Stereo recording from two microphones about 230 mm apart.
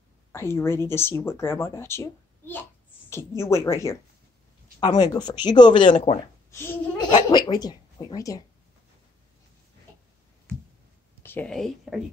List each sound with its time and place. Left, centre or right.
0.3 s speech: centre
5.9 s speech: left
6.5 s speech: centre
11.2 s speech: centre